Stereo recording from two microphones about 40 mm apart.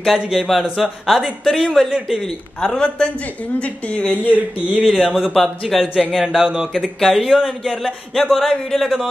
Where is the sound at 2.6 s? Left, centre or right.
Left.